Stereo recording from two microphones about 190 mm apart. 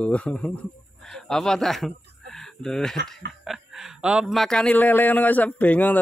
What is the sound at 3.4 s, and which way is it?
Speech, centre (ahead or behind).